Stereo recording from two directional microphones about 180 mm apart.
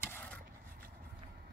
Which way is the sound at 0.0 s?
10° left (ahead or behind).